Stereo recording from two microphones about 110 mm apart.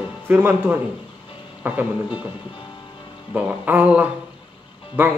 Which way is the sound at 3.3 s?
15° right (ahead or behind).